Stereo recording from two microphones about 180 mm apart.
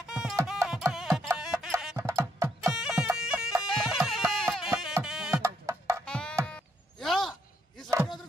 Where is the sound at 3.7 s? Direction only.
Centre (ahead or behind).